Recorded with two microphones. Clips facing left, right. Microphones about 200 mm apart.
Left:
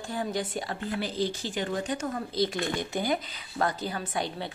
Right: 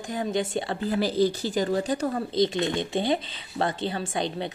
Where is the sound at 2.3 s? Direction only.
20° right (ahead or behind).